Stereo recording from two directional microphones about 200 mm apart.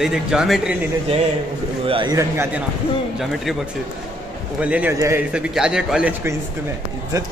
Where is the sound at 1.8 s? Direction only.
25° right (ahead or behind).